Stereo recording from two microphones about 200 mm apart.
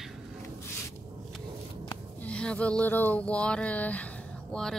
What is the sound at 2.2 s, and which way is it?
Speech, 5° left (ahead or behind).